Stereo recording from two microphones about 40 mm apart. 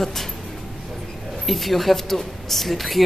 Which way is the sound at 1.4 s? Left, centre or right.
Centre.